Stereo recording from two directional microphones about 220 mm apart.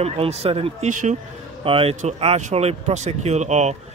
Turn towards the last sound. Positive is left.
turn(degrees=-30)  # may be behind; listen again after turning